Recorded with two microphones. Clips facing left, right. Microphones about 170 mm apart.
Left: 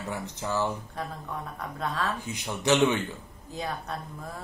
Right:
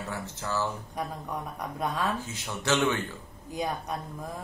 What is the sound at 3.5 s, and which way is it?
Speech, 15° right (ahead or behind).